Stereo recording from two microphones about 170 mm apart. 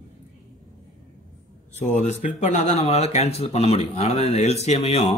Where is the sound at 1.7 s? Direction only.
45° left (ahead or behind).